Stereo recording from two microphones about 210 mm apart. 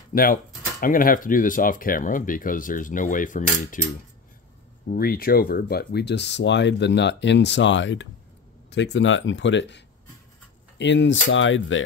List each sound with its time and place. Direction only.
0.1 s speech: 45° left (ahead or behind)
4.8 s speech: 45° left (ahead or behind); by 11.8 s 65° left (ahead or behind)